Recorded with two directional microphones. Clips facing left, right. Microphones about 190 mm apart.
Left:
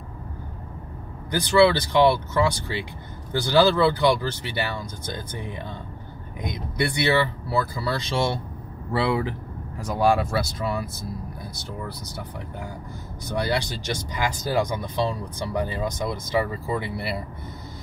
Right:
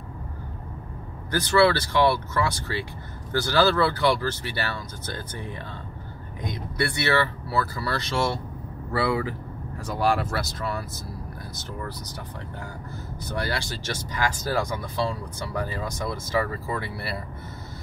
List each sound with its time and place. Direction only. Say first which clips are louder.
1.3 s speech: left 2 dB; 15° left (ahead or behind)
13.4 s speech: left 5 dB; 20° left (ahead or behind)